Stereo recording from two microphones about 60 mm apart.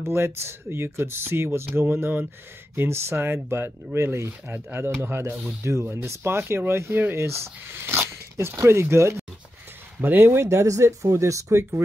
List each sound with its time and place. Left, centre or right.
0.1 s speech: right
6.0 s speech: right
9.9 s speech: right
10.4 s speech: right